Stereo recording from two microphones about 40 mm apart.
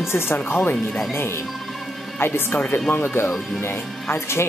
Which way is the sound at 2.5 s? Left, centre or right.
Left.